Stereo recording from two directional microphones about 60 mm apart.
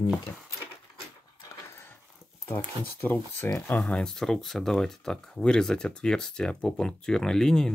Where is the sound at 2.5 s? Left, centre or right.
Left.